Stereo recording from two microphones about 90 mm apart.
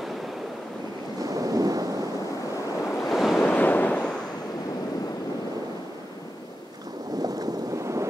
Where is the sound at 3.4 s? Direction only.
15° left (ahead or behind).